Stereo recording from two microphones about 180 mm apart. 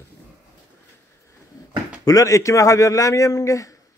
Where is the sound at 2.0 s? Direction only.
20° left (ahead or behind).